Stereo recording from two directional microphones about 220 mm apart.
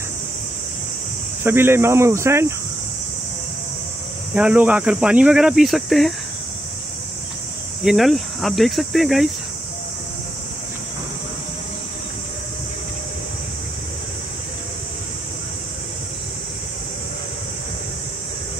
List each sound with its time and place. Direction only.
1.4 s speech: 10° right (ahead or behind)
4.4 s speech: 5° right (ahead or behind)
7.8 s speech: centre (ahead or behind)